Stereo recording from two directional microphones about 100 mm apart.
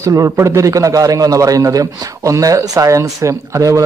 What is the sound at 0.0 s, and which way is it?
A man's voice, 30° right (ahead or behind).